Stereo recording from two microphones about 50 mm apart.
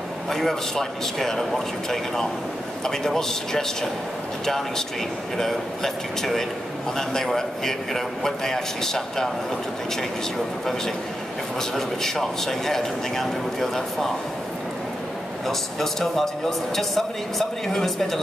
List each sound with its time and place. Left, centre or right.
0.3 s a man's voice: centre
11.7 s a man's voice: centre
15.4 s a man's voice: centre